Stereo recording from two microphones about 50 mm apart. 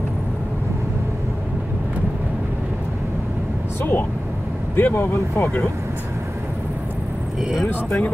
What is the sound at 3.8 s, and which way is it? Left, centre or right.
Vehicle, left.